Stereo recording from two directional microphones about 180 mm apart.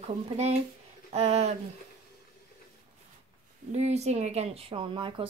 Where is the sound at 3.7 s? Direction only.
35° right (ahead or behind).